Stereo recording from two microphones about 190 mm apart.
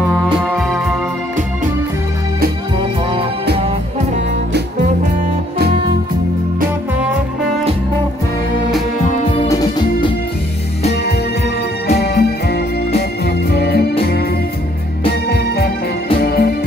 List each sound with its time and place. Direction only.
0.1 s music: 5° left (ahead or behind)
9.5 s music: 20° left (ahead or behind)
11.9 s music: 55° left (ahead or behind)
15.0 s music: 55° left (ahead or behind)